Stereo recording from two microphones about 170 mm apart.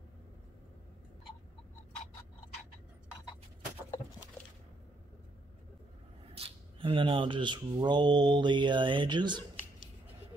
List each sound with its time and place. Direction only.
6.3 s speech: 35° right (ahead or behind)